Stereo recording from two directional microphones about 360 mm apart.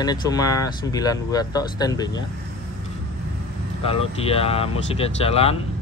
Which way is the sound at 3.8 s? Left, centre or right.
Centre.